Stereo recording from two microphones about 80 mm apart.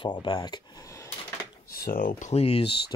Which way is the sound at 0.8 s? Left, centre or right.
Left.